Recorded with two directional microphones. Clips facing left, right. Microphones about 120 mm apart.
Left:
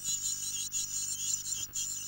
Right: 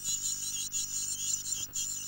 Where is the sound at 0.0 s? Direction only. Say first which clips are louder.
Right 1 dB; 15° right (ahead or behind).